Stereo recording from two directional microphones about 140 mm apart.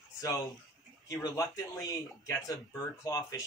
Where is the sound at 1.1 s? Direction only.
25° left (ahead or behind).